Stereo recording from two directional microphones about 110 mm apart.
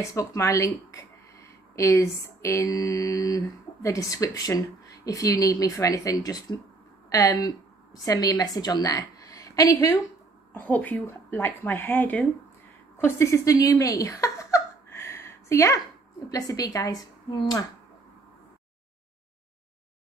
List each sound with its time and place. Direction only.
0.0 s speech: 30° left (ahead or behind)
1.8 s a woman's voice: 30° left (ahead or behind)
10.5 s speech: 15° left (ahead or behind)
12.9 s a sound: 25° left (ahead or behind)
16.3 s speech: 35° left (ahead or behind)